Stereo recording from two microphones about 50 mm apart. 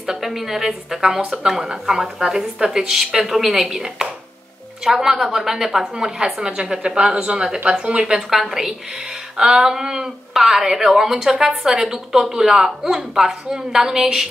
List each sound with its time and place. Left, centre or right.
0.0 s speech: centre